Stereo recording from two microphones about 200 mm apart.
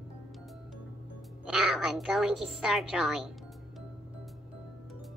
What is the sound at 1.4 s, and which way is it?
A child's voice, 5° right (ahead or behind).